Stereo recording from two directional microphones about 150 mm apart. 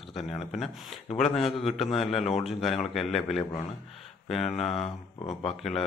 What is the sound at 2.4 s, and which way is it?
Speech, centre (ahead or behind).